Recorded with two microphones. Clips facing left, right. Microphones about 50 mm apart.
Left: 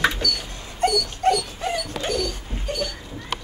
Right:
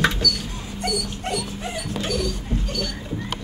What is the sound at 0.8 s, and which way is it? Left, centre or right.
Dog, left.